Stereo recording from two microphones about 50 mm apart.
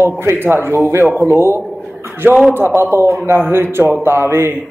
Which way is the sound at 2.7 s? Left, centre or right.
Right.